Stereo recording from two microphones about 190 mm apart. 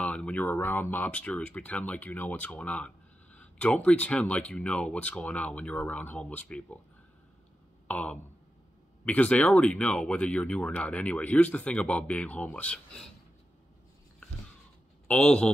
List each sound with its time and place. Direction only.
0.0 s speech: 5° left (ahead or behind)
7.9 s speech: 5° left (ahead or behind)
15.0 s a man's voice: 5° left (ahead or behind)